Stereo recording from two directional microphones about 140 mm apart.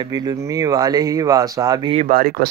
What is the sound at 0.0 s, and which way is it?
Speech, 30° right (ahead or behind).